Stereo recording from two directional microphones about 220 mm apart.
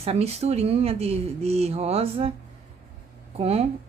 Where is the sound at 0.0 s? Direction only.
25° right (ahead or behind).